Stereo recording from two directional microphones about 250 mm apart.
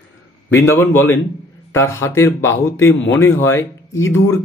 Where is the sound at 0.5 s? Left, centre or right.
Centre.